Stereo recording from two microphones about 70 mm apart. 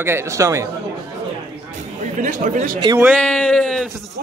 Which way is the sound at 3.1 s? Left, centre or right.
Centre.